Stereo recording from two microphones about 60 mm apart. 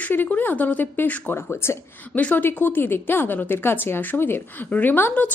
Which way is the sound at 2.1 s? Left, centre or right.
Left.